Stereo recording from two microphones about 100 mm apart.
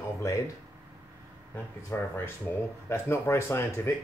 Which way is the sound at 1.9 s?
25° left (ahead or behind).